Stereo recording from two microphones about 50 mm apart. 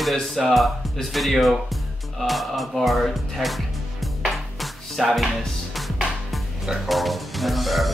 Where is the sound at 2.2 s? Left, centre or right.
Centre.